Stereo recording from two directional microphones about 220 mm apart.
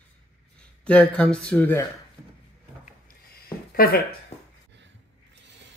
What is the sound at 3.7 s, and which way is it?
Speech, 40° left (ahead or behind).